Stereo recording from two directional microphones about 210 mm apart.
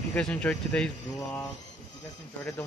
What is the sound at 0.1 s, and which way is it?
Speech, 5° left (ahead or behind).